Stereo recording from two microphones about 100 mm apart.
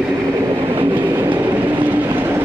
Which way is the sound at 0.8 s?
20° right (ahead or behind).